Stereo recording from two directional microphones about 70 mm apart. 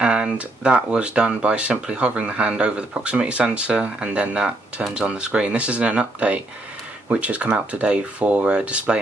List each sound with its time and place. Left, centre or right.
0.0 s speech: centre